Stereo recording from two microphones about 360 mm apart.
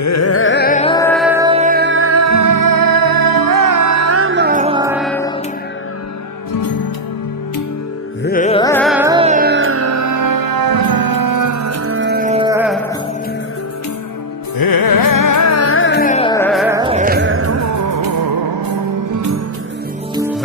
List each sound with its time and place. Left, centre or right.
0.0 s music: left; by 5.3 s centre
6.5 s music: left
8.2 s music: left; by 12.8 s centre
14.6 s music: left; by 19.2 s right
20.2 s music: centre